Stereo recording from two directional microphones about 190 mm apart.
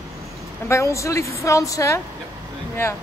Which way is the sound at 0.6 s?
15° left (ahead or behind).